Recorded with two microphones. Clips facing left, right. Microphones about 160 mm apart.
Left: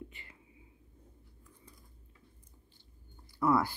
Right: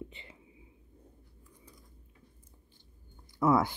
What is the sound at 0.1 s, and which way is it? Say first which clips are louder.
Whispering: right 4 dB; 25° right (ahead or behind).